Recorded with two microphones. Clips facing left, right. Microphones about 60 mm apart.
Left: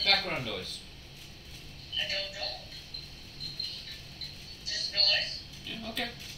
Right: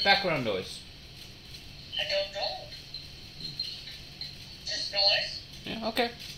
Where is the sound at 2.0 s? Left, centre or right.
Right.